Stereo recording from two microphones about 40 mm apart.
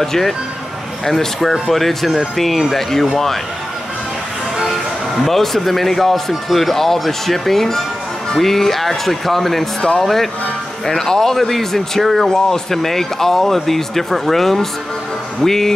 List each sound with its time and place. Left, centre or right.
0.0 s speech: centre
5.2 s speech: centre
9.8 s speech: centre
10.0 s speech: centre